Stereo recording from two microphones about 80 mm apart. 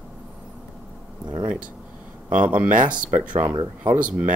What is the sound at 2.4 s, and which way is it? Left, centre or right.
Speech, centre.